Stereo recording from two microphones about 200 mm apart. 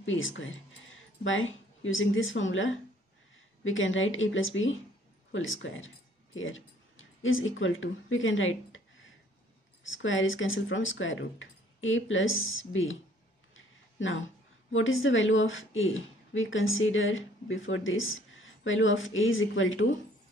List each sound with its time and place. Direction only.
0.0 s a woman's voice: 75° left (ahead or behind)
13.9 s a woman's voice: 75° left (ahead or behind)